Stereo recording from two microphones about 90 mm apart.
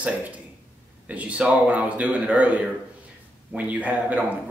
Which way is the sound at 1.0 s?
15° right (ahead or behind).